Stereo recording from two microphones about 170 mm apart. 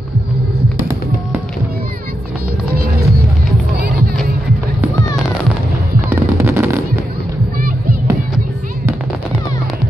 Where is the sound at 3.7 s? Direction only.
70° right (ahead or behind).